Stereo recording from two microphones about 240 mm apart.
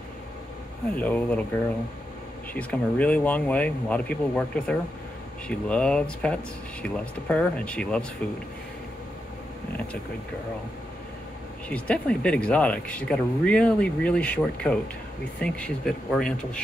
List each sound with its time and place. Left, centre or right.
0.9 s speech: centre
2.5 s speech: centre
11.7 s speech: centre